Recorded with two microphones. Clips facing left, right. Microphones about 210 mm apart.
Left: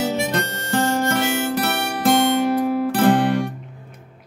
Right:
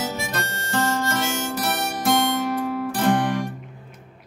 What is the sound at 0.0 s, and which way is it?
Harmonica, 65° left (ahead or behind).